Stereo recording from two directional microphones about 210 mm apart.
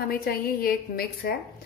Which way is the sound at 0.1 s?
45° left (ahead or behind).